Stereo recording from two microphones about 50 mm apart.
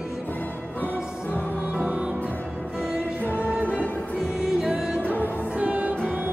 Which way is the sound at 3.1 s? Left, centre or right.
Left.